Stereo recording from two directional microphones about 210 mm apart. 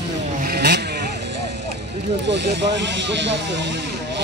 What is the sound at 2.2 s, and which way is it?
Speech, 55° right (ahead or behind).